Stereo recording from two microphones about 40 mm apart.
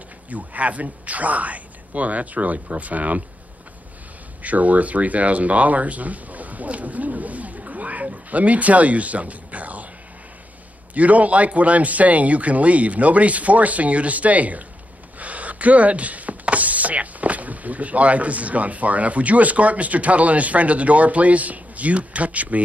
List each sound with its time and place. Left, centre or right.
0.3 s speech: right
4.4 s speech: right
11.0 s speech: right